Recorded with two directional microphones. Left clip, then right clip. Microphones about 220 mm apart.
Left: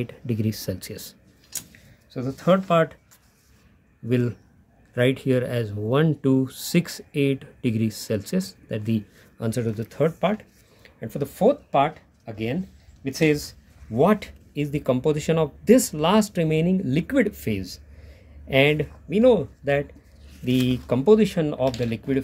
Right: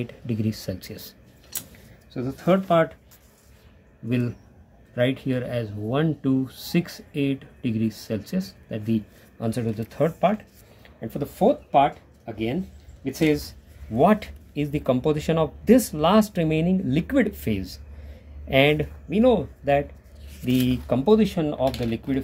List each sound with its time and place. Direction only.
0.0 s speech: 15° left (ahead or behind)
2.1 s speech: 30° left (ahead or behind)
4.9 s speech: 30° left (ahead or behind)
13.9 s speech: 15° left (ahead or behind)